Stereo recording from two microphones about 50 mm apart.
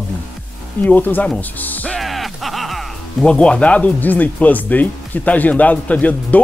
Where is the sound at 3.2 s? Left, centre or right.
Left.